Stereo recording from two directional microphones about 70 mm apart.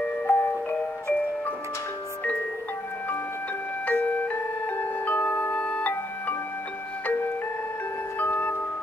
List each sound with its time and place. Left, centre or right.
0.3 s music: left
3.8 s glockenspiel: left
8.2 s music: left